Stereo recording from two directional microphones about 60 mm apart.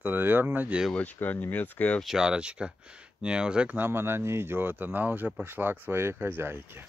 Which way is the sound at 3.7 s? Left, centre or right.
Right.